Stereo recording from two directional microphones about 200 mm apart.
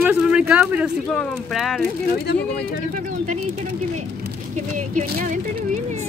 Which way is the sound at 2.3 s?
55° left (ahead or behind).